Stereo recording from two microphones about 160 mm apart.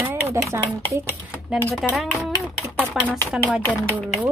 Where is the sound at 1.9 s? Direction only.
Centre (ahead or behind).